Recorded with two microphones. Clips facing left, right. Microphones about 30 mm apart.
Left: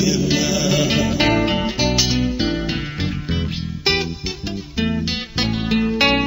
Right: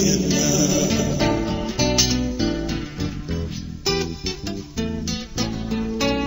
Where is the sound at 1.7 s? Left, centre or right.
Centre.